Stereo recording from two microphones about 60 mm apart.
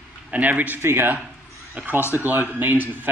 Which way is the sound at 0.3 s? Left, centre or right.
Right.